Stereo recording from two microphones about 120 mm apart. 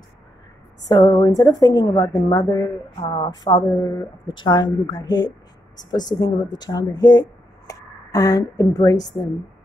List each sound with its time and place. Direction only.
0.8 s a woman's voice: 30° left (ahead or behind)